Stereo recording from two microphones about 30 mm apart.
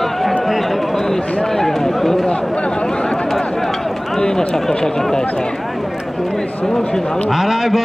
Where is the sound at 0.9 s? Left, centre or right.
Centre.